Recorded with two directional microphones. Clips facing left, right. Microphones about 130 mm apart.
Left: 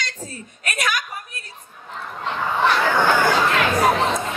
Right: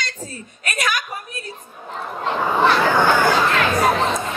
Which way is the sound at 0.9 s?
30° right (ahead or behind).